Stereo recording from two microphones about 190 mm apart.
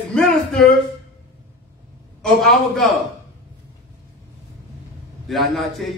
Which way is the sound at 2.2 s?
Centre (ahead or behind).